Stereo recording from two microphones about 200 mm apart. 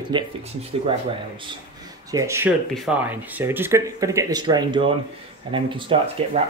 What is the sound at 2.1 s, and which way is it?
Speech, 15° right (ahead or behind).